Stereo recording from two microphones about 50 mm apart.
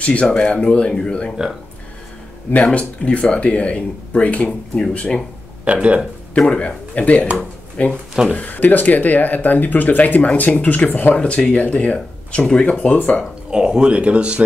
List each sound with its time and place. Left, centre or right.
0.0 s speech: left
2.5 s speech: left
5.7 s speech: right
6.3 s speech: left
11.1 s speech: left
13.5 s speech: centre